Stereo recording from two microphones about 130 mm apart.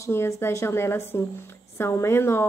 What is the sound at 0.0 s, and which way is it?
A woman's voice, 20° left (ahead or behind).